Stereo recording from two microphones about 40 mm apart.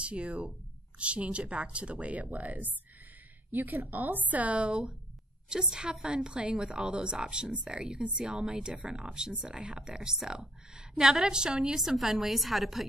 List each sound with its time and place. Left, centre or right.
0.0 s a woman's voice: right
4.3 s speech: right; by 11.8 s centre
11.8 s a woman's voice: centre